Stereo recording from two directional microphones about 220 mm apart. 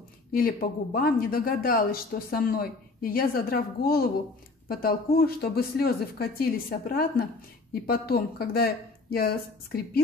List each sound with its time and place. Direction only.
0.3 s speech: 40° left (ahead or behind)